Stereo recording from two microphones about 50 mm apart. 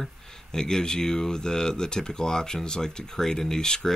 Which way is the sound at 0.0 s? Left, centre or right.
Centre.